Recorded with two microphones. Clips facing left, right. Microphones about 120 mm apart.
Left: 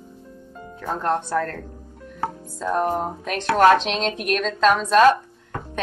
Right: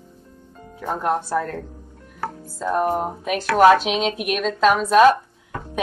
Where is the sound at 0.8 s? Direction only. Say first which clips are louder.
Right 1 dB; 10° right (ahead or behind).